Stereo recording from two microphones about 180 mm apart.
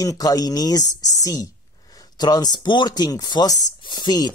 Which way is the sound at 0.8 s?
40° left (ahead or behind).